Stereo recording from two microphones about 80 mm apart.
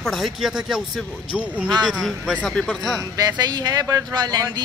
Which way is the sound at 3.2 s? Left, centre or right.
Right.